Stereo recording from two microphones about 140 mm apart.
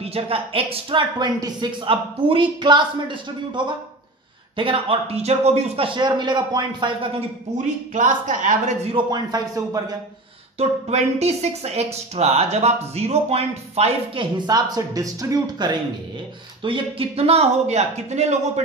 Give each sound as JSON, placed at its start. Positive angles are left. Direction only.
{"t": 0.0, "sound": "a woman's voice", "side_deg": -45}
{"t": 7.5, "sound": "speech", "side_deg": -65}
{"t": 8.9, "sound": "speech", "side_deg": -30}
{"t": 10.6, "sound": "speech", "side_deg": -50}
{"t": 14.4, "sound": "speech", "side_deg": -25}
{"t": 16.6, "sound": "speech", "side_deg": -40}